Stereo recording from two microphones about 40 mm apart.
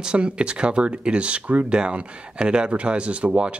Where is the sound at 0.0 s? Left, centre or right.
Right.